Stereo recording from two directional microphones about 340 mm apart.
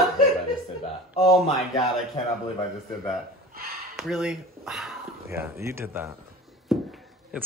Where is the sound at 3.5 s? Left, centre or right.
Right.